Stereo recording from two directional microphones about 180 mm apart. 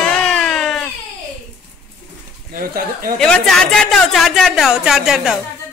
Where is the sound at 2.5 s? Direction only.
50° right (ahead or behind).